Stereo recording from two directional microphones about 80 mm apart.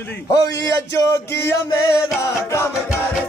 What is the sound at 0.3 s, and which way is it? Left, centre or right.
Speech, left.